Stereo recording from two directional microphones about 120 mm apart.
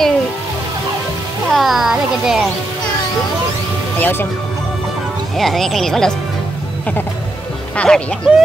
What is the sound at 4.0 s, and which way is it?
Speech, 15° left (ahead or behind).